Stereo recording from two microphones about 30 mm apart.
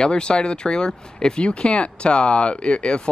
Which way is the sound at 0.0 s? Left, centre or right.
Left.